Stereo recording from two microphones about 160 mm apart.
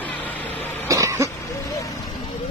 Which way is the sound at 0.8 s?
20° right (ahead or behind).